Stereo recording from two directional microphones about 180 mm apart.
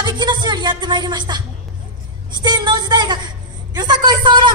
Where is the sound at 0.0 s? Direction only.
25° right (ahead or behind).